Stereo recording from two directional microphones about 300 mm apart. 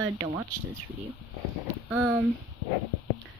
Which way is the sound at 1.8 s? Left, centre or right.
Centre.